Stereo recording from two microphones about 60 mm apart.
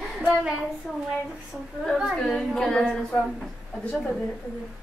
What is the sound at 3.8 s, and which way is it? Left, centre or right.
Speech, centre.